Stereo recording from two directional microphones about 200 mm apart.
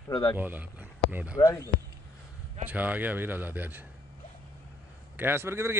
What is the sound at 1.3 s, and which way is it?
Speech, 15° left (ahead or behind).